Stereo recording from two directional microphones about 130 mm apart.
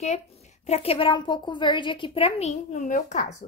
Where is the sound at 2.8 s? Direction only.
85° left.